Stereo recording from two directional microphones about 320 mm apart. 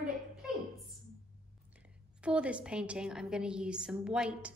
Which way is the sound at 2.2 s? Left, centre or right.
Centre.